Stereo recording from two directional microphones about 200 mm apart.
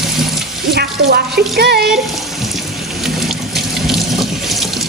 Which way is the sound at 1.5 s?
50° right (ahead or behind).